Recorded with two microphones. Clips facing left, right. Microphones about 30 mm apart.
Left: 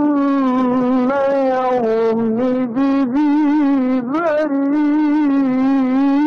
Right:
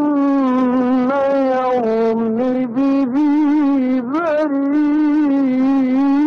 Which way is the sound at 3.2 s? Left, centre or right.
Left.